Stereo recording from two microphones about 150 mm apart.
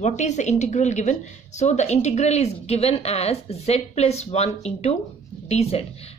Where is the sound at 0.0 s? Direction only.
50° left (ahead or behind).